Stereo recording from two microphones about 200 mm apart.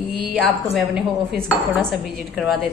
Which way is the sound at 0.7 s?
Centre (ahead or behind).